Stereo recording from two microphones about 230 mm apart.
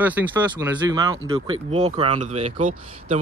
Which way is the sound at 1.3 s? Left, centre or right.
Right.